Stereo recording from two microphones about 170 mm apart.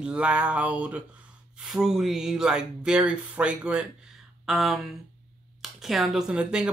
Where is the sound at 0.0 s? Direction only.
5° right (ahead or behind).